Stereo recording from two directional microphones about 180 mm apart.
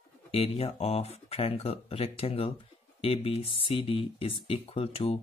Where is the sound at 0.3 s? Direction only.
30° left (ahead or behind).